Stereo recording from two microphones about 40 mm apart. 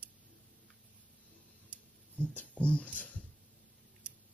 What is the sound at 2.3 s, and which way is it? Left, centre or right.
Speech, left.